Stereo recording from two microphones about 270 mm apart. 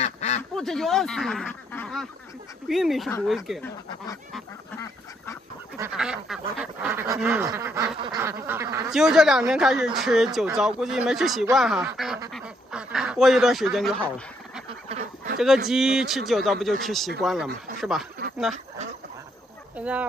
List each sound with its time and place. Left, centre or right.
0.0 s quack: left
0.4 s speech: centre
2.7 s duck: centre
3.1 s speech: centre
3.3 s duck: centre
4.3 s goose: centre
5.8 s duck: centre
12.3 s speech: centre
14.7 s duck: right
15.3 s speech: centre
15.7 s duck: centre
17.7 s speech: centre
19.8 s duck: centre